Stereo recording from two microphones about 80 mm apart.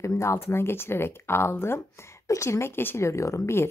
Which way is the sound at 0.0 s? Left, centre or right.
Left.